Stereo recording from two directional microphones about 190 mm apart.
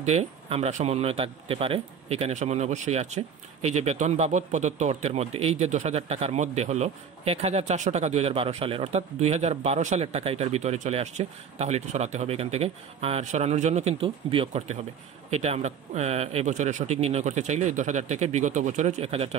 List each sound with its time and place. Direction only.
0.0 s a man's voice: 35° right (ahead or behind)